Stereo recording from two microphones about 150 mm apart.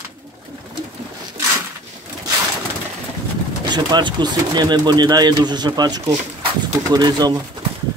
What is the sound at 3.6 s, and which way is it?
Speech, 30° right (ahead or behind).